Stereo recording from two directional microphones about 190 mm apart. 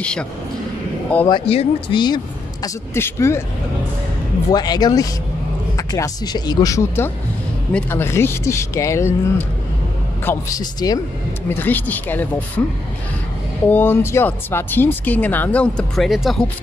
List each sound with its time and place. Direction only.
0.0 s a man's voice: 5° left (ahead or behind)
1.2 s speech: 25° left (ahead or behind)
4.5 s speech: 20° left (ahead or behind)
10.2 s speech: 20° left (ahead or behind)
13.7 s speech: 10° left (ahead or behind)